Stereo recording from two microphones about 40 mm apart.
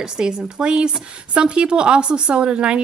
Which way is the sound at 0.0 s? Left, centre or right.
Centre.